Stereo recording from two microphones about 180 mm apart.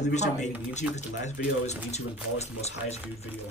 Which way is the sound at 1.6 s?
35° left (ahead or behind).